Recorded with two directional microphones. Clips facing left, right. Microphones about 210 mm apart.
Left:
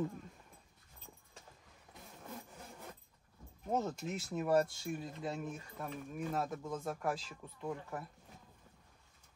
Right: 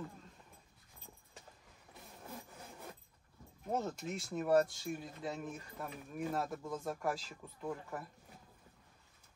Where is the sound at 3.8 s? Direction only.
Centre (ahead or behind).